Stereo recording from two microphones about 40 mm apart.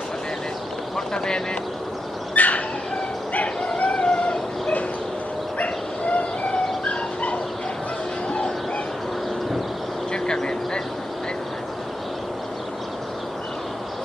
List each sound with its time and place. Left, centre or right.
0.9 s speech: centre
2.3 s dog: left
3.6 s a sound: left
3.9 s a sound: left
5.6 s dog: left
10.1 s vehicle: centre